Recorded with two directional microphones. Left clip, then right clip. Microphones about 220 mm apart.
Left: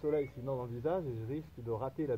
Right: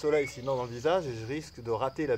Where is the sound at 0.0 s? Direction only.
10° right (ahead or behind).